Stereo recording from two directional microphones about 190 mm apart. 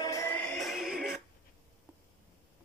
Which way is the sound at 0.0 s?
15° left (ahead or behind).